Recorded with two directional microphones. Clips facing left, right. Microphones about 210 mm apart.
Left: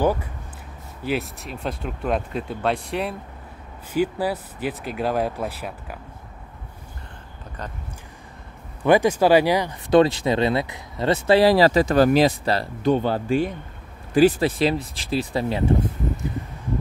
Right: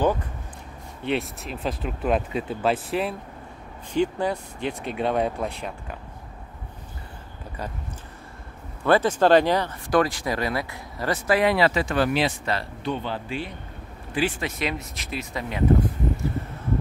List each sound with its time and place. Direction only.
0.0 s speech: 10° left (ahead or behind)
8.8 s speech: 15° left (ahead or behind); by 15.9 s 30° left (ahead or behind)